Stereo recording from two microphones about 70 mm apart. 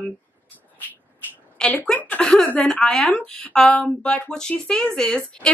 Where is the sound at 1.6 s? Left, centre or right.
Centre.